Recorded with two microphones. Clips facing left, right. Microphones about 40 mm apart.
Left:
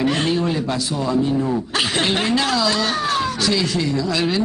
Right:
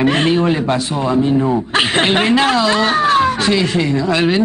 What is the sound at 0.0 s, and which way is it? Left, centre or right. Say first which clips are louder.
Speech: right 5 dB; right.